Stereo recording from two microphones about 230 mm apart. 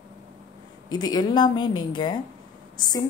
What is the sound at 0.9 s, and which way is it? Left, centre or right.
A woman's voice, centre.